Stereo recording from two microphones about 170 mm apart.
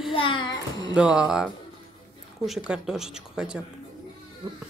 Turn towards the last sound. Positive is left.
turn(degrees=-5)  # may be behind; listen again after turning